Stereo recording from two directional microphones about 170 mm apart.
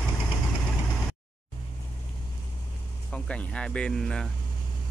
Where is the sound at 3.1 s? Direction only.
5° left (ahead or behind).